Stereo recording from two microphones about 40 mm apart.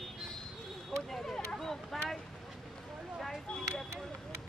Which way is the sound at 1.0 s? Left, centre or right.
Centre.